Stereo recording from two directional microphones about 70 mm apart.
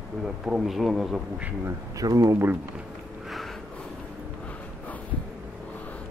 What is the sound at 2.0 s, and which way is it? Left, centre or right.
Speech, right.